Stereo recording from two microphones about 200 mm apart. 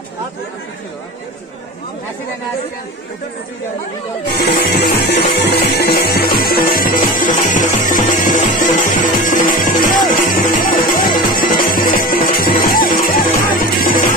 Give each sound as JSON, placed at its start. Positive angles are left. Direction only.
{"t": 4.5, "sound": "music", "side_deg": 55}